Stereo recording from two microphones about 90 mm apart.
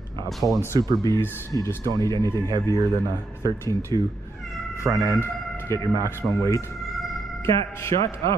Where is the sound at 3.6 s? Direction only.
30° left (ahead or behind).